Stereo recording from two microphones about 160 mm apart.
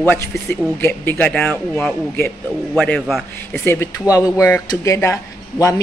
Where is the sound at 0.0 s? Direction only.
10° left (ahead or behind).